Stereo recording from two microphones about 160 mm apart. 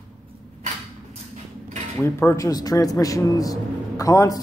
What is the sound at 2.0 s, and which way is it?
A man's voice, 20° left (ahead or behind).